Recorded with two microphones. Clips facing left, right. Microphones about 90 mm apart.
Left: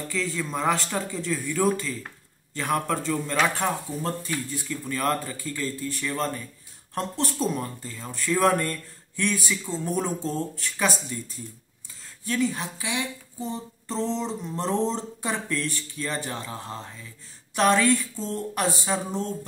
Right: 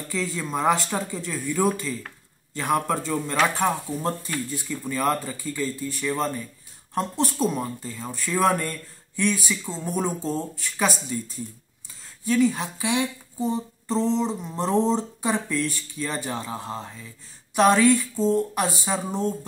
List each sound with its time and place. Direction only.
0.1 s speech: 15° right (ahead or behind)
4.6 s speech: 15° right (ahead or behind)
12.3 s speech: 15° right (ahead or behind)
12.7 s speech: 25° right (ahead or behind)
13.4 s speech: 10° right (ahead or behind)